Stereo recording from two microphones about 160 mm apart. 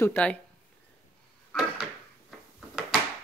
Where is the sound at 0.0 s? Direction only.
10° left (ahead or behind).